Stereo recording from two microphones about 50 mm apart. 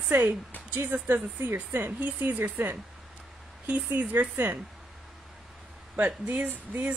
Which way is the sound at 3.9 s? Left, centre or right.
Right.